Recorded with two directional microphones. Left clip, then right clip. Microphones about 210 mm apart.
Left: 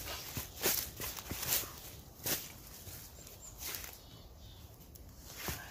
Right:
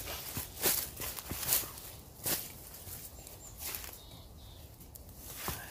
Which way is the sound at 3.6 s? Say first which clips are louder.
Even; 5° left (ahead or behind).